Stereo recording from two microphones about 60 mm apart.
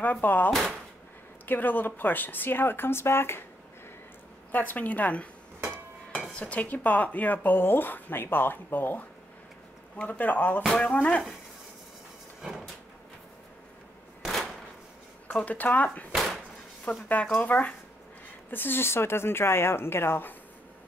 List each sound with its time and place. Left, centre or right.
0.0 s speech: left
0.5 s speech: centre
1.4 s speech: left
4.5 s a woman's voice: left
6.3 s a woman's voice: left
12.4 s a sound: centre
14.2 s a sound: centre
15.3 s a woman's voice: left
17.1 s a woman's voice: left
18.5 s speech: left